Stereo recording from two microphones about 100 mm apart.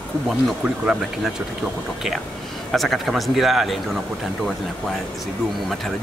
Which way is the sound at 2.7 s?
Centre (ahead or behind).